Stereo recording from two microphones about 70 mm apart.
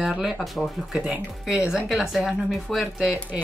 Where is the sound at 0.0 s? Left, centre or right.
Centre.